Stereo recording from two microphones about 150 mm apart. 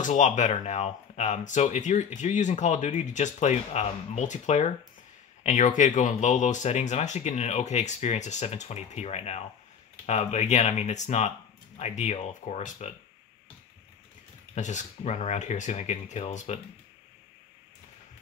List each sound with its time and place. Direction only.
0.0 s speech: 55° left (ahead or behind)
14.5 s speech: 55° left (ahead or behind)